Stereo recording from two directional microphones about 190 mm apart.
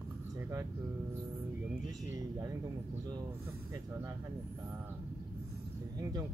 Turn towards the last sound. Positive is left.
turn(degrees=-20)  # may be behind; listen again after turning